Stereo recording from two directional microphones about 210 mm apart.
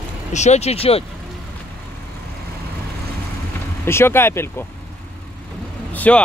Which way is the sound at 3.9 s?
10° left (ahead or behind).